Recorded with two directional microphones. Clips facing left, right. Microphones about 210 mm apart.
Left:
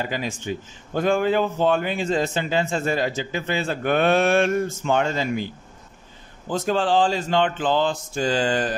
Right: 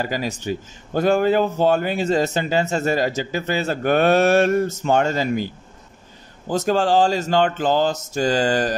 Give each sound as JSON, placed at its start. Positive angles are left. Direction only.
{"t": 0.0, "sound": "a man's voice", "side_deg": -40}
{"t": 6.5, "sound": "speech", "side_deg": -45}